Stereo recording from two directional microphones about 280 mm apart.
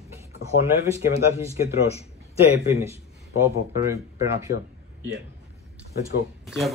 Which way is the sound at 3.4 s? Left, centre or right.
Centre.